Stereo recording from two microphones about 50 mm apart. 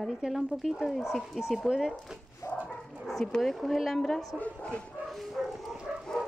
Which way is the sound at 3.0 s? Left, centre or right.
Centre.